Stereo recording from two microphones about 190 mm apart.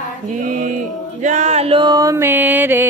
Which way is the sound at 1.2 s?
35° right (ahead or behind).